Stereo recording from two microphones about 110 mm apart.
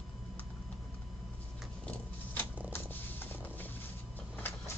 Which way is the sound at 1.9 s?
20° left (ahead or behind).